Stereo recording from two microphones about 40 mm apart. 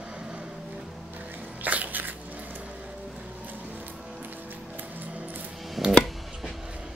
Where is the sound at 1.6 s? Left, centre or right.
Right.